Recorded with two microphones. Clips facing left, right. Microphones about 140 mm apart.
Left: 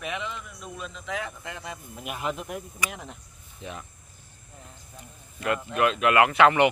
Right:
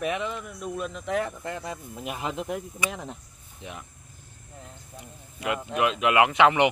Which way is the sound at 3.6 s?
15° right (ahead or behind).